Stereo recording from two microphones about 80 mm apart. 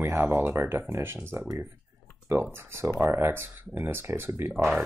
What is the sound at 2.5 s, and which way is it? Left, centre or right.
Speech, right.